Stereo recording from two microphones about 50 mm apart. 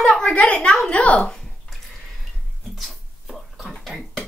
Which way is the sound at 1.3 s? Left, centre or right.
Centre.